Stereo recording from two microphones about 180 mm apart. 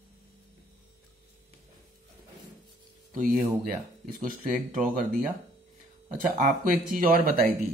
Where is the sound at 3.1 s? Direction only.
50° right (ahead or behind).